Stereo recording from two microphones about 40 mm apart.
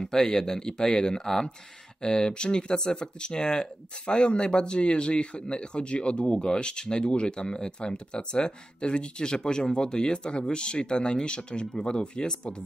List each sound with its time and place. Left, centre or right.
0.0 s speech: centre